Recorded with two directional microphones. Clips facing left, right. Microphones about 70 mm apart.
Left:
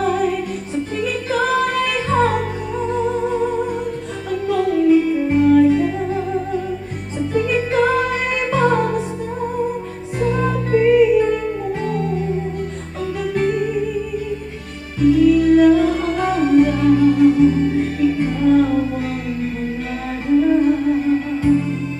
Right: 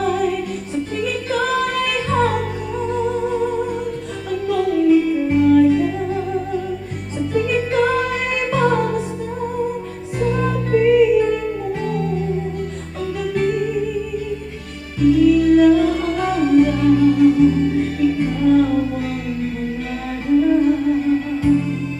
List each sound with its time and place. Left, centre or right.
0.0 s music: left
20.2 s music: left